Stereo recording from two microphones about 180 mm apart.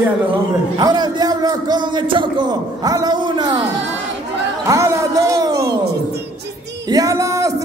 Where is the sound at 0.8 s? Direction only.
25° right (ahead or behind).